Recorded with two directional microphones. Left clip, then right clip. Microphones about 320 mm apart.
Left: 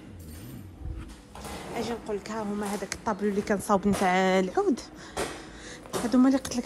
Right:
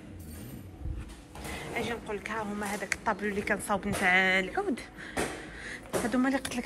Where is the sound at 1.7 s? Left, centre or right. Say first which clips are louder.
Left 2 dB; centre.